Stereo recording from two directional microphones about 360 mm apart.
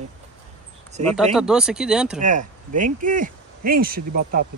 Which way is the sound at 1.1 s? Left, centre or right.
Centre.